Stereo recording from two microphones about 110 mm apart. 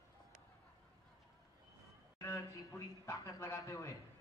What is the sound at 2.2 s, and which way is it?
A man's voice, 25° left (ahead or behind).